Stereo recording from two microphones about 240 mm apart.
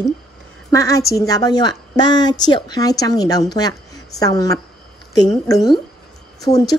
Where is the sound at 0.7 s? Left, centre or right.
Centre.